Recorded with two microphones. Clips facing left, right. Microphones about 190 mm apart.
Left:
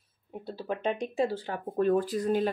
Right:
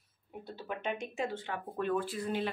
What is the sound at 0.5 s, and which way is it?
Speech, 30° left (ahead or behind).